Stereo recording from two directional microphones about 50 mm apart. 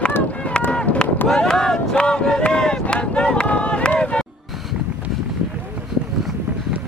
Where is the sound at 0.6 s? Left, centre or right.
Left.